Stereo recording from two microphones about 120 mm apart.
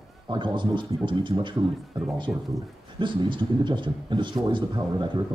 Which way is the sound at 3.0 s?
45° right (ahead or behind).